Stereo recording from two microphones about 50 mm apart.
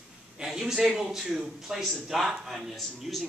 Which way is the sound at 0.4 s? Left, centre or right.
Centre.